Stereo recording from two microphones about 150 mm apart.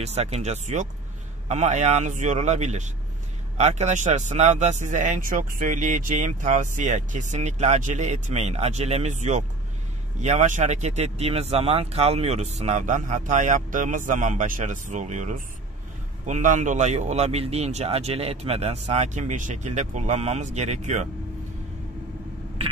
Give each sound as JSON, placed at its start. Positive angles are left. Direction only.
{"t": 0.0, "sound": "speech", "side_deg": -45}